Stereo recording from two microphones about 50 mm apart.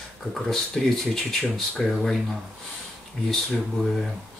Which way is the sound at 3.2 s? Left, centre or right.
Centre.